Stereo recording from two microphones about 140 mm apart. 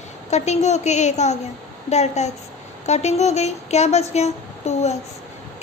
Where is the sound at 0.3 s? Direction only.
55° left (ahead or behind).